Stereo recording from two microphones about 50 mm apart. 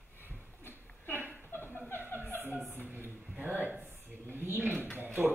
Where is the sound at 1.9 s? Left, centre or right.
Right.